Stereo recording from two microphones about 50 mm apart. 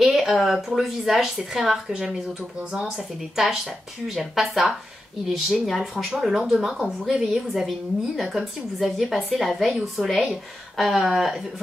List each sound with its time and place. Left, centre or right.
0.0 s a woman's voice: centre